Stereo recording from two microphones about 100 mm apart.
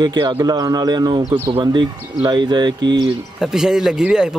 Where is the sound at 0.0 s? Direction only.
45° right (ahead or behind).